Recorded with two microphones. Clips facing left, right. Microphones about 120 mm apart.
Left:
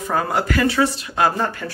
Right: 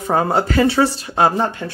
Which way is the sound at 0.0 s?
30° right (ahead or behind).